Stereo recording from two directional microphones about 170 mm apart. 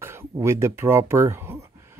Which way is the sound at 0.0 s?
15° right (ahead or behind).